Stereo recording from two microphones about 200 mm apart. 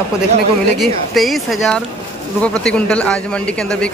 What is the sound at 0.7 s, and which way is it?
Speech, centre (ahead or behind).